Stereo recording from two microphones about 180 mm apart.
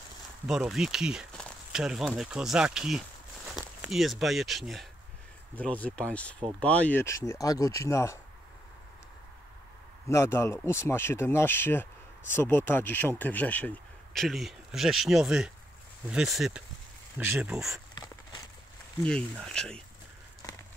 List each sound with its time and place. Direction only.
0.5 s speech: centre (ahead or behind); by 8.2 s 15° left (ahead or behind)
10.0 s speech: 15° left (ahead or behind); by 17.8 s centre (ahead or behind)
17.9 s walk: 25° left (ahead or behind)
19.4 s speech: 5° left (ahead or behind)
20.4 s horse: 20° left (ahead or behind)